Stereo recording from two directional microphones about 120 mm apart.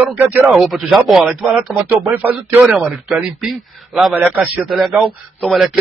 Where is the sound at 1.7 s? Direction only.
15° right (ahead or behind); by 5.8 s centre (ahead or behind).